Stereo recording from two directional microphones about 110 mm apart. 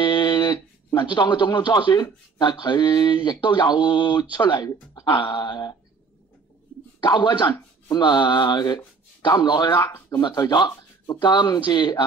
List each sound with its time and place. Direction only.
0.0 s a sound: 40° left (ahead or behind)
0.9 s speech: 45° left (ahead or behind)
7.0 s speech: 40° left (ahead or behind)
9.9 s speech: 20° left (ahead or behind)
10.2 s speech: 40° left (ahead or behind)